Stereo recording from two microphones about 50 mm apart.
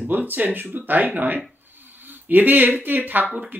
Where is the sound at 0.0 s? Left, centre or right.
Right.